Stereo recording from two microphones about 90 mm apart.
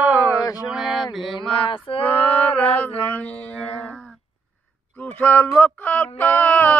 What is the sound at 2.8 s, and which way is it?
Mantra, 15° left (ahead or behind).